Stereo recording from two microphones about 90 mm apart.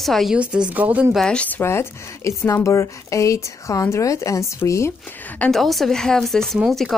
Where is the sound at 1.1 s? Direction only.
10° left (ahead or behind).